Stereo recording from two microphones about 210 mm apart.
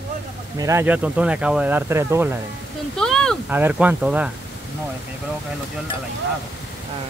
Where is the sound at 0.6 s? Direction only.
15° right (ahead or behind).